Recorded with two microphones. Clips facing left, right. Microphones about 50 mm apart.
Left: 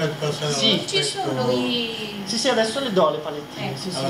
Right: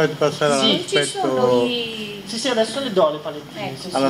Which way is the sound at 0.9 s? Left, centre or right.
Right.